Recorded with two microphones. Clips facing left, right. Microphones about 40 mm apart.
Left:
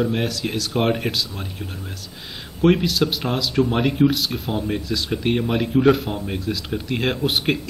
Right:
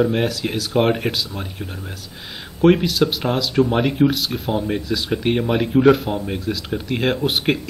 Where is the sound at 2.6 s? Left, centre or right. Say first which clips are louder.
Right 3 dB; centre.